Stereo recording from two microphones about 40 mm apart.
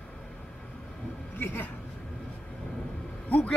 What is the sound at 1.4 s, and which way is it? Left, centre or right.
Speech, left.